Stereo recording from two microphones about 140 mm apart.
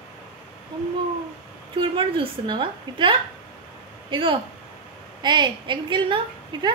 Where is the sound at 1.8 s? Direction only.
35° right (ahead or behind).